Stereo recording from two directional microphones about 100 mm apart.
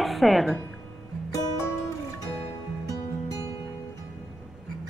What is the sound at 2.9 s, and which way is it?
Music, 35° left (ahead or behind).